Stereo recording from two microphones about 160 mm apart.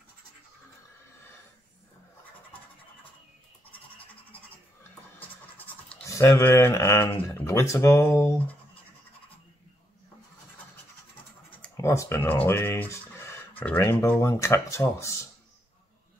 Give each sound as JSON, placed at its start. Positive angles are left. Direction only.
{"t": 5.6, "sound": "scratch", "side_deg": 10}
{"t": 6.0, "sound": "speech", "side_deg": 20}
{"t": 11.7, "sound": "speech", "side_deg": 20}